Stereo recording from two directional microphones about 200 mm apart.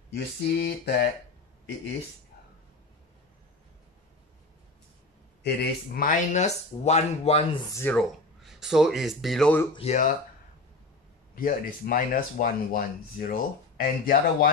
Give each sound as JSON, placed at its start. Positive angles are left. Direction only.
{"t": 0.1, "sound": "a sound", "side_deg": 55}
{"t": 5.4, "sound": "speech", "side_deg": 50}
{"t": 7.7, "sound": "speech", "side_deg": 5}
{"t": 9.8, "sound": "speech", "side_deg": 35}
{"t": 11.3, "sound": "speech", "side_deg": 45}